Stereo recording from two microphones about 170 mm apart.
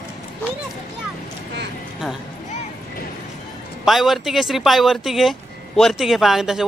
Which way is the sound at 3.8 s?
Centre (ahead or behind).